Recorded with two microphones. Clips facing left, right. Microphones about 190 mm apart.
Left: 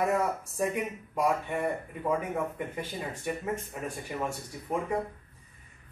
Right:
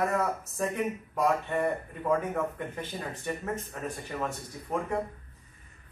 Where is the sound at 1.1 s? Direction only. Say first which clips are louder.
Right 1 dB; 10° left (ahead or behind).